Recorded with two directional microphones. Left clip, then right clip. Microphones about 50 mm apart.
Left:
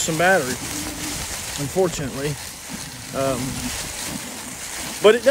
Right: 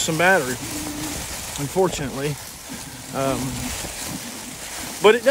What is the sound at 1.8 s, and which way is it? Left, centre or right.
Speech, centre.